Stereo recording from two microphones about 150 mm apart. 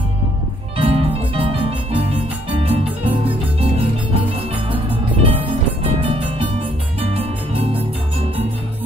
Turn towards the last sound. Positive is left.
turn(degrees=-40)  # may be behind; listen again after turning